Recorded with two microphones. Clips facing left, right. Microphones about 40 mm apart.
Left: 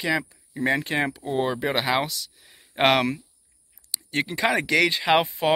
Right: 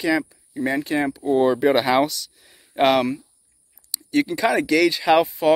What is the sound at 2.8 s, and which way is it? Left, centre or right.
Speech, left.